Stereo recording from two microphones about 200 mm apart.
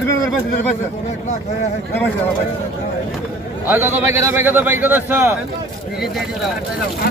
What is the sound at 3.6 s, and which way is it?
A man's voice, 10° right (ahead or behind).